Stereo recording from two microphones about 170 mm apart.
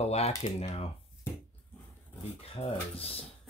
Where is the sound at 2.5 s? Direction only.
35° left (ahead or behind).